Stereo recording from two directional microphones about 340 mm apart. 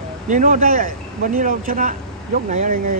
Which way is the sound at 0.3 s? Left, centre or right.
Right.